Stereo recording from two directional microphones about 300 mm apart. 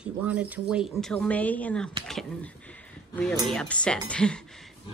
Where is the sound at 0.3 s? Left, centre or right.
Centre.